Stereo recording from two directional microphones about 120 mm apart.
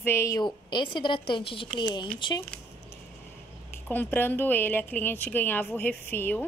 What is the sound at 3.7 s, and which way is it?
Speech, 15° left (ahead or behind).